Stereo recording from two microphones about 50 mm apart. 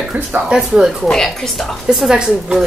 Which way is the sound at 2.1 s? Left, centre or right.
Centre.